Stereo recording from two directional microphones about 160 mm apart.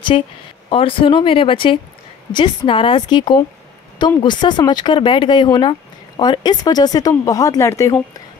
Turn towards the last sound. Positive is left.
turn(degrees=20)  # may be behind; listen again after turning